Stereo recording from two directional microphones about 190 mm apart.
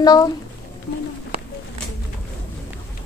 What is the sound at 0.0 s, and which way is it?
Speech, 20° left (ahead or behind).